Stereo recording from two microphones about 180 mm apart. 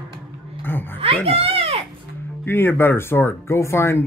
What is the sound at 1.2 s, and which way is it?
Speech, 30° right (ahead or behind).